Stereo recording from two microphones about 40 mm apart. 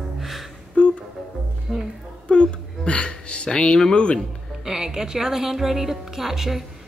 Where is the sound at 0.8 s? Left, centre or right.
Left.